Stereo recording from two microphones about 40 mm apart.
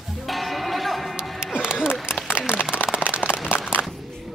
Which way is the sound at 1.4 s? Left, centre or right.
Right.